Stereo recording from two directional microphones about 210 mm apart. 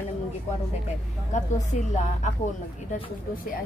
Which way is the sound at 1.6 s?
35° left (ahead or behind).